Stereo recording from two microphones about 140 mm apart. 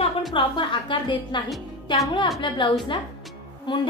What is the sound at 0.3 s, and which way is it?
A woman's voice, 35° left (ahead or behind).